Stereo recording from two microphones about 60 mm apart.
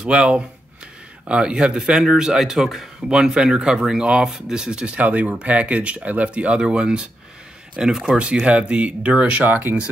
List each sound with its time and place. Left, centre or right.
0.0 s speech: centre